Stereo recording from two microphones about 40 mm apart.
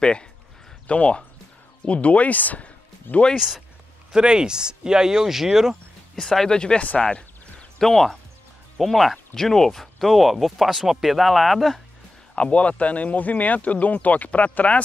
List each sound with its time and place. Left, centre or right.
0.0 s speech: left
3.3 s speech: centre
6.2 s speech: centre
6.8 s speech: left
7.8 s speech: centre
12.4 s speech: left